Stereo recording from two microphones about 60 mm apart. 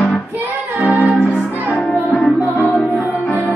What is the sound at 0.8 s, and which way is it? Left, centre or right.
Music, right.